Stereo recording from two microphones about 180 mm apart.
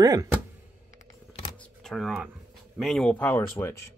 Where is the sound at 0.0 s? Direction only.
20° right (ahead or behind).